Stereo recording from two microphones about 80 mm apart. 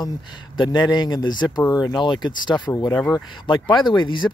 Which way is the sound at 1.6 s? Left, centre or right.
Left.